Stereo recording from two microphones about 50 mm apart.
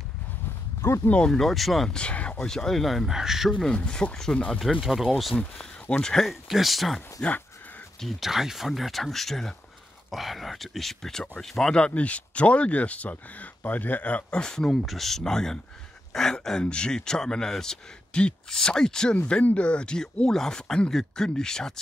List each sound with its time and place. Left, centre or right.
0.8 s speech: left
1.4 s speech: centre
1.9 s speech: left; by 3.5 s centre
3.7 s speech: left
4.8 s speech: centre
5.6 s speech: centre
6.2 s speech: centre
7.2 s speech: centre
8.0 s speech: centre
11.7 s speech: left
14.4 s speech: centre
19.4 s speech: left